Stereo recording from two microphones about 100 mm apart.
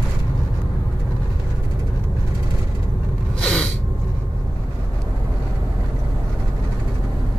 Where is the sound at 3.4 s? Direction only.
5° left (ahead or behind).